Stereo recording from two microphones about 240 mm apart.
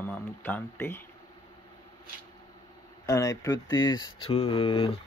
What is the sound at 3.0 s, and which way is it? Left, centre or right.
Speech, centre.